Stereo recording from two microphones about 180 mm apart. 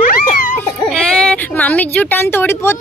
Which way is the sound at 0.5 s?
5° left (ahead or behind).